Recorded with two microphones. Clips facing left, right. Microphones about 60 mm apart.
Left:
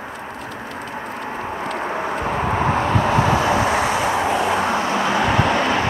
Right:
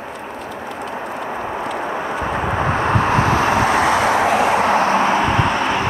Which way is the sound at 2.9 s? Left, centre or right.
Right.